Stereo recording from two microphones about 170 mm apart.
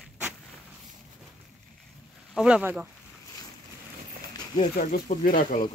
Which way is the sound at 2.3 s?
5° right (ahead or behind).